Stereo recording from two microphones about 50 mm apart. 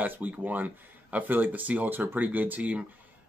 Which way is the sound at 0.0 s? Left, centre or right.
Right.